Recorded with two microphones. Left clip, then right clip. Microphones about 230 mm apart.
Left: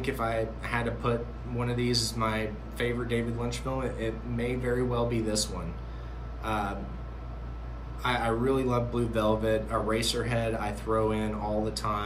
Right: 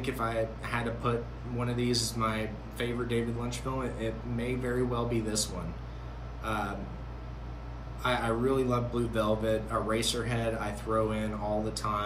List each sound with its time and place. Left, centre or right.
0.0 s speech: centre
8.0 s speech: centre